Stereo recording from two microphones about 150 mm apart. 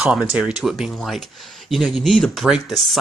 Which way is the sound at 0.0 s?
5° right (ahead or behind).